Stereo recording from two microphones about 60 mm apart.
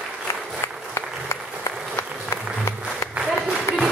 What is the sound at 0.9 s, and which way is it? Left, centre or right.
Applause, left.